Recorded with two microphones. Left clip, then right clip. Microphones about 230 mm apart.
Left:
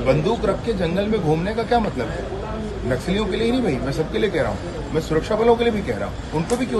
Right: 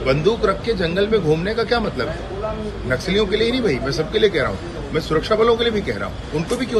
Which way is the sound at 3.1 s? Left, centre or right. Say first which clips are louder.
Right 5 dB; centre.